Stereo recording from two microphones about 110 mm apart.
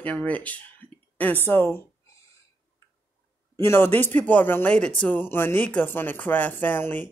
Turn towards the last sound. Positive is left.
turn(degrees=15)  # may be behind; listen again after turning